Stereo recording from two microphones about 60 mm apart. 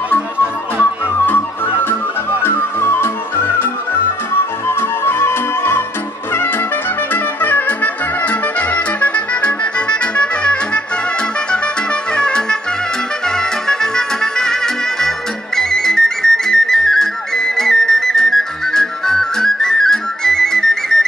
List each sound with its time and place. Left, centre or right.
2.4 s music: left
7.1 s music: left; by 21.0 s centre